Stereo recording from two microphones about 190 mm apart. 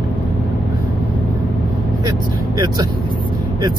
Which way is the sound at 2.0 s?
20° right (ahead or behind).